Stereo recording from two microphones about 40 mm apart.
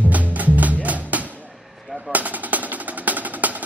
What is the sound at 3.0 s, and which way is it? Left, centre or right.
Music, right.